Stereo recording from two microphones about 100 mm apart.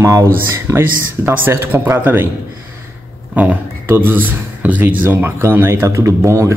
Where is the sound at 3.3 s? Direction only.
15° right (ahead or behind).